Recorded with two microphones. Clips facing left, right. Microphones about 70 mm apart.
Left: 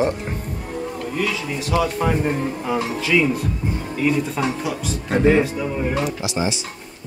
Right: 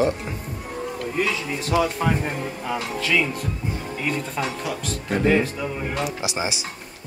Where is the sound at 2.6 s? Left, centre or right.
Centre.